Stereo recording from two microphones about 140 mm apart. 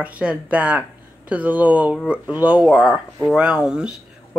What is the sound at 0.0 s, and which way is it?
Speech, 10° right (ahead or behind).